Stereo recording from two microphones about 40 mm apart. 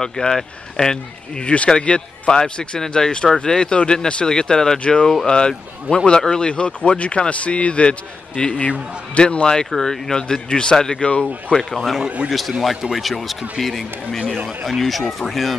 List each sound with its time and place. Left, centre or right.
0.0 s speech: centre
1.4 s speech: left; by 4.7 s centre
4.7 s speech: left
9.7 s speech: centre
10.2 s speech: left
12.3 s speech: centre